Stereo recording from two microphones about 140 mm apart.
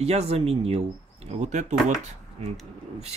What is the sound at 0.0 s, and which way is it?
Speech, 50° right (ahead or behind).